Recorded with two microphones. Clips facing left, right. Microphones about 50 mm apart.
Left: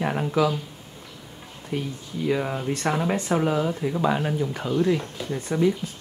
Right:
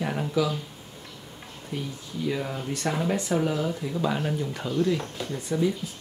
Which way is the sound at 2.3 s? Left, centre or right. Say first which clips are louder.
Left 6 dB; left.